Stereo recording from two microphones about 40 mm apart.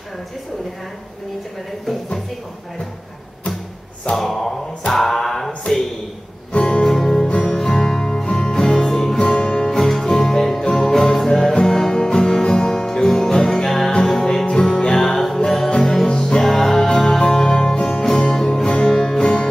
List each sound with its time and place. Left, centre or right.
4.1 s a sound: centre
4.9 s music: centre
6.5 s music: left
6.9 s music: centre
7.2 s music: left
7.5 s music: centre
9.2 s music: left
9.6 s music: centre